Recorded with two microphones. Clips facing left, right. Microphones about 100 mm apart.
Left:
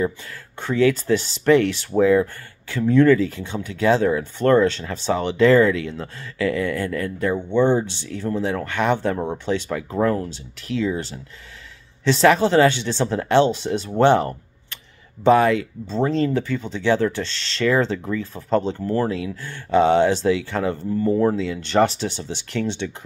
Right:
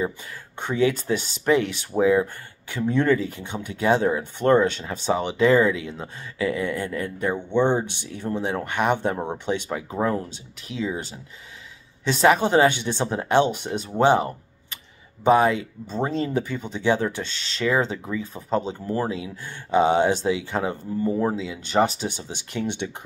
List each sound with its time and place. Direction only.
0.6 s speech: 20° right (ahead or behind)
15.2 s speech: 20° right (ahead or behind)